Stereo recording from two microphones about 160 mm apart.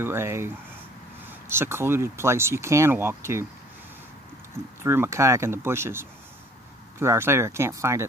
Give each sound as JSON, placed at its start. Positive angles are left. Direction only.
{"t": 0.0, "sound": "speech", "side_deg": -15}
{"t": 4.8, "sound": "speech", "side_deg": -15}